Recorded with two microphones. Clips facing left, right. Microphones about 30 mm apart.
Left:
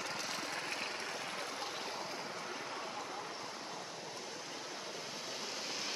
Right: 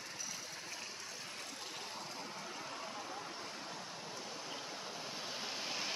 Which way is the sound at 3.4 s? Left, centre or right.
Centre.